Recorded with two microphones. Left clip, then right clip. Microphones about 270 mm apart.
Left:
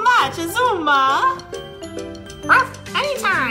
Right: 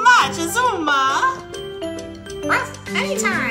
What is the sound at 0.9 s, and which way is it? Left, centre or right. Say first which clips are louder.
Music: left 2 dB; centre.